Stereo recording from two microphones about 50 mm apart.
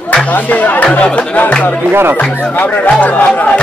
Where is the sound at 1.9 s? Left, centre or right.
Right.